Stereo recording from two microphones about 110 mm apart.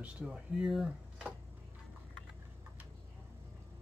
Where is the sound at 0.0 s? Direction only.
10° right (ahead or behind).